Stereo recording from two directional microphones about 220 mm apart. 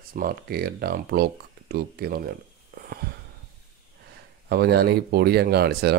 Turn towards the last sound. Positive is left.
turn(degrees=-50)  # may be behind; listen again after turning